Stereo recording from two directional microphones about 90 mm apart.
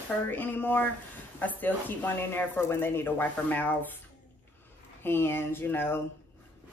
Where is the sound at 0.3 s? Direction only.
20° left (ahead or behind).